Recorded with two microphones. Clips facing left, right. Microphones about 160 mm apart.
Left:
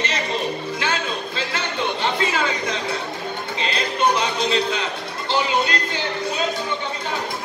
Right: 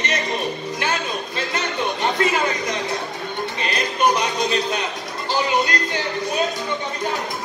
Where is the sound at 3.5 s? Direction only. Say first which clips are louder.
Left 2 dB; 25° left (ahead or behind).